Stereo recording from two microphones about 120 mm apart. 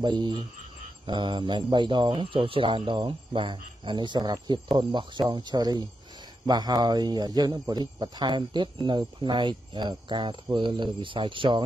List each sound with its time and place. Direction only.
0.0 s speech: 40° right (ahead or behind)